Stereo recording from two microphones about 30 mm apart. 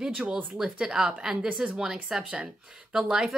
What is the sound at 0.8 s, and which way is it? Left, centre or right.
Speech, centre.